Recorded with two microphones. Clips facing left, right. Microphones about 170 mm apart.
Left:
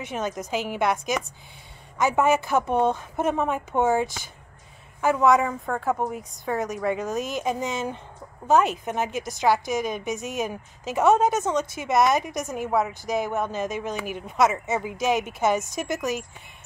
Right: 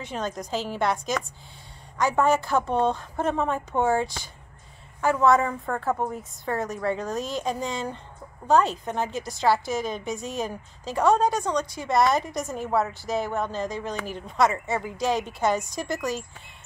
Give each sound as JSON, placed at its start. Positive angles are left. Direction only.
{"t": 0.0, "sound": "a woman's voice", "side_deg": 20}
{"t": 2.0, "sound": "a woman's voice", "side_deg": 20}
{"t": 5.3, "sound": "a woman's voice", "side_deg": 0}
{"t": 7.2, "sound": "a woman's voice", "side_deg": 20}